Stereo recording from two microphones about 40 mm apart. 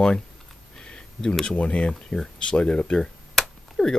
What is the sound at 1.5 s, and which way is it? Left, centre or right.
Speech, left.